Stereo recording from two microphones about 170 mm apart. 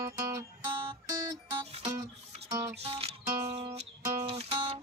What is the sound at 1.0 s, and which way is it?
Music, 20° right (ahead or behind).